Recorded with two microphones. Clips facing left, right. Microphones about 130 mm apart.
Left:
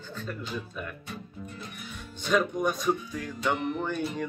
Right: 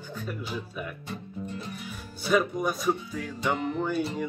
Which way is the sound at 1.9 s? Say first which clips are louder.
Right 2 dB; 5° right (ahead or behind).